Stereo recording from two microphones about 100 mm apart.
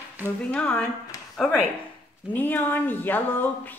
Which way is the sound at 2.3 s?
20° left (ahead or behind).